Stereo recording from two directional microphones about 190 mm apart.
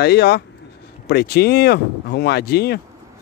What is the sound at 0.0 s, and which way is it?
Speech, 60° left (ahead or behind).